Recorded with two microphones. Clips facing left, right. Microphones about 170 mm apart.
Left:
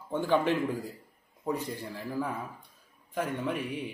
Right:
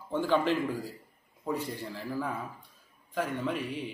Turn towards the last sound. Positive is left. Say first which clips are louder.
# even
turn(degrees=15)  # may be behind; listen again after turning